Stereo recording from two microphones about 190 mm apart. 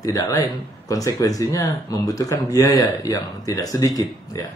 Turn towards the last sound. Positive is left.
turn(degrees=20)  # may be behind; listen again after turning